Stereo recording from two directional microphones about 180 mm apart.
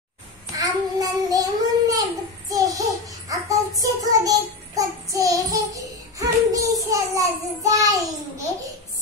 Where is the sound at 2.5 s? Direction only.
20° right (ahead or behind).